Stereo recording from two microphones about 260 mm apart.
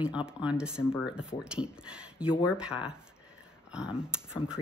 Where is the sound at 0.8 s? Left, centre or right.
Centre.